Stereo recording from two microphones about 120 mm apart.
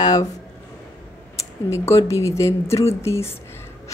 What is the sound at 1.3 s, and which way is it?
A woman's voice, 25° left (ahead or behind).